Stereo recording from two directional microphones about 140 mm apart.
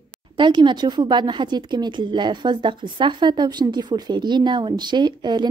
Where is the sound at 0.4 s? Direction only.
35° right (ahead or behind).